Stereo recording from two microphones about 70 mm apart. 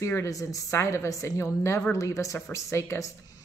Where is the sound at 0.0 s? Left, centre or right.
Left.